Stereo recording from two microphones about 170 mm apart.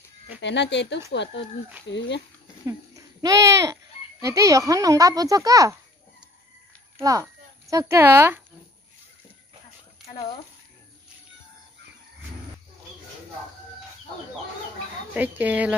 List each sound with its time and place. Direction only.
0.4 s speech: 90° left
2.6 s speech: 20° right (ahead or behind)
7.0 s a child's voice: 20° right (ahead or behind)
15.1 s speech: 10° right (ahead or behind)